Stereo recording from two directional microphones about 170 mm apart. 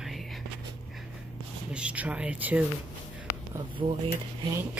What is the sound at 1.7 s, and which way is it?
Speech, 5° right (ahead or behind).